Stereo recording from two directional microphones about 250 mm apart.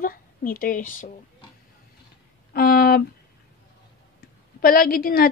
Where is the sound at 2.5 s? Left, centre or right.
Left.